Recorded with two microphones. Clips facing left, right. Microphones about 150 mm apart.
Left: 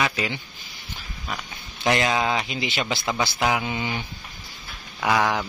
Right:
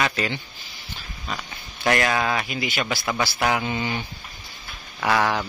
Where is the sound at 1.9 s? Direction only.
20° left (ahead or behind).